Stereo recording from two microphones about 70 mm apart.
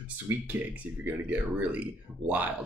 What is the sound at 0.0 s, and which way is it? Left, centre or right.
Speech, right.